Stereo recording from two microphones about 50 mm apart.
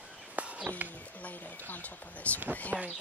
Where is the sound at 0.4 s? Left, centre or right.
Right.